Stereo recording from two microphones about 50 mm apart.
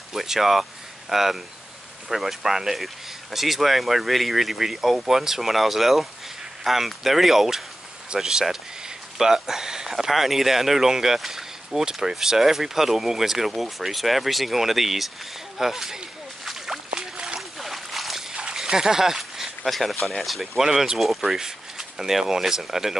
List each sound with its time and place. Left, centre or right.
0.1 s speech: centre
16.4 s slosh: centre
16.9 s a sound: centre
17.4 s a sound: centre
20.2 s speech: centre
20.6 s speech: centre